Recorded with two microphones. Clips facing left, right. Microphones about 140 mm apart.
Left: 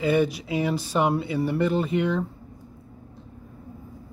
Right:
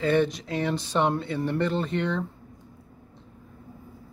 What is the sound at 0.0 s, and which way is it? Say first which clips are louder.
Speech: left 1 dB; 10° left (ahead or behind).